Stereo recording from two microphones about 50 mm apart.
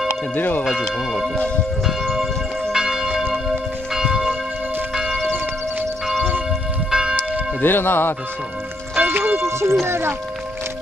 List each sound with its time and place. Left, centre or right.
0.4 s speech: left
2.7 s church bell: centre
5.2 s church bell: right
6.9 s church bell: centre
7.6 s speech: left
8.9 s music: right
9.4 s speech: right